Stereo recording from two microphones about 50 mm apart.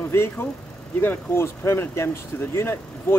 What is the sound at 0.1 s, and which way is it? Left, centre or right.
Speech, left.